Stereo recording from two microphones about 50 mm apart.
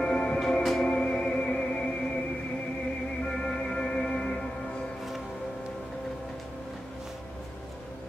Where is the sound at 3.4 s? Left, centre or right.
Centre.